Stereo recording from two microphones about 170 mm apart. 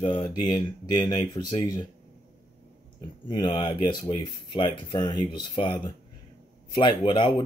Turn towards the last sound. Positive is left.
turn(degrees=25)  # may be behind; listen again after turning